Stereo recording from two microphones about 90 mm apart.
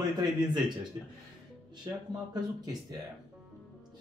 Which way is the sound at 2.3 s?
45° right (ahead or behind).